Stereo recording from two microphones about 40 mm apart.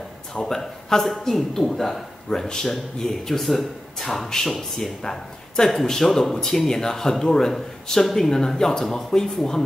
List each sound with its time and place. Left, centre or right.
0.3 s speech: centre